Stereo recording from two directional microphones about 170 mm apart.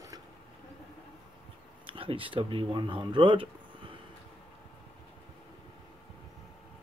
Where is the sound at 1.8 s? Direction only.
30° right (ahead or behind).